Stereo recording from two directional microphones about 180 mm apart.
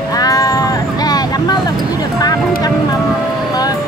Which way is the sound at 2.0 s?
20° left (ahead or behind).